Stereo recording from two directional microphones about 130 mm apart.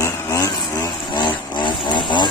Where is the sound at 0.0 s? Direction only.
25° left (ahead or behind).